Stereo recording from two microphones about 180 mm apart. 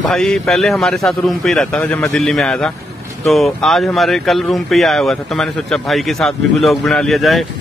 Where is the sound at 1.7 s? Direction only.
10° left (ahead or behind).